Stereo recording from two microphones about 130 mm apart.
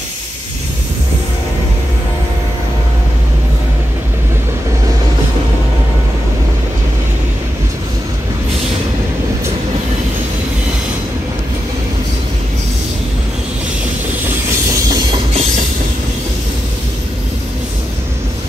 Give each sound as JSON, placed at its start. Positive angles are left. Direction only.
{"t": 14.9, "sound": "music", "side_deg": -40}